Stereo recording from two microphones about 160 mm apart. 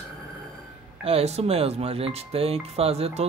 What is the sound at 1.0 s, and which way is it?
Speech, 40° right (ahead or behind).